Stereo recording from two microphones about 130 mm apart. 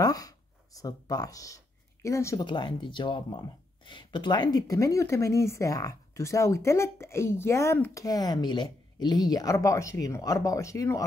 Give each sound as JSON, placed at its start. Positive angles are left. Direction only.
{"t": 0.0, "sound": "speech", "side_deg": 30}
{"t": 2.4, "sound": "speech", "side_deg": 35}